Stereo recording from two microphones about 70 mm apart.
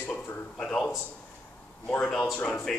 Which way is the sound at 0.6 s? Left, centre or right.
Centre.